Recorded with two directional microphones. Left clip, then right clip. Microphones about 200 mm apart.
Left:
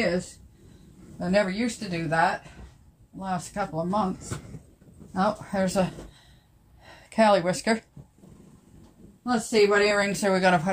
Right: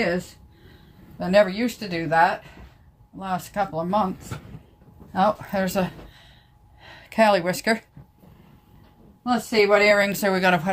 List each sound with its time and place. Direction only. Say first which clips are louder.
1.2 s speech: right 6 dB; 25° right (ahead or behind)
5.1 s speech: right 5 dB; 40° right (ahead or behind)
5.5 s speech: right 1 dB; 20° right (ahead or behind)
9.2 s speech: right 2 dB; 30° right (ahead or behind)